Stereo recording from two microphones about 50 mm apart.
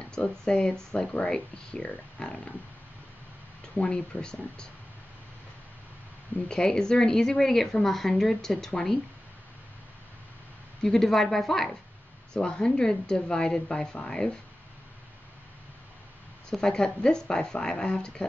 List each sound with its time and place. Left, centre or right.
0.2 s speech: left
3.7 s speech: left
6.5 s speech: centre
10.8 s speech: centre
16.4 s speech: centre